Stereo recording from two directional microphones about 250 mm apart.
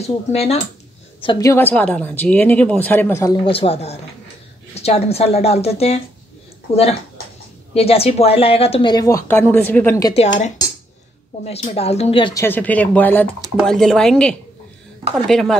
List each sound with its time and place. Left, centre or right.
0.0 s speech: left
10.1 s speech: left; by 15.5 s centre